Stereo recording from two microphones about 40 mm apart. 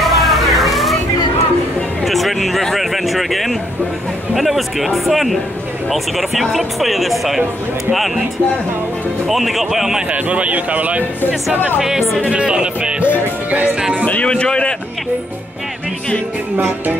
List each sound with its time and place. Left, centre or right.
0.0 s a sound: centre
2.0 s a sound: centre
4.4 s speech: centre
9.3 s speech: centre
10.1 s speech: right
12.3 s speech: right
14.2 s speech: left